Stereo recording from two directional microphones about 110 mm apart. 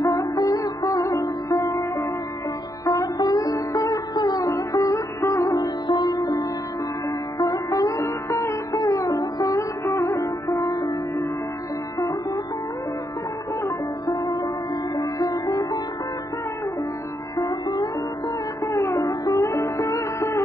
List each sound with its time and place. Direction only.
0.0 s music: 30° left (ahead or behind)
2.8 s sitar: 30° left (ahead or behind)
7.1 s music: 35° left (ahead or behind)
13.7 s music: 35° left (ahead or behind)
15.0 s sitar: 35° left (ahead or behind)
17.4 s music: 35° left (ahead or behind)